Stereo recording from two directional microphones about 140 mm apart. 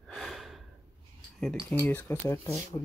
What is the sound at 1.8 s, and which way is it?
Speech, 15° left (ahead or behind).